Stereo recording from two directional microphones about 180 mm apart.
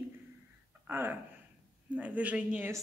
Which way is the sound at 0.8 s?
10° right (ahead or behind).